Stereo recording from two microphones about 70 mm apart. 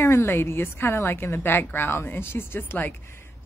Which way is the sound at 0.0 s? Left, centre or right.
Left.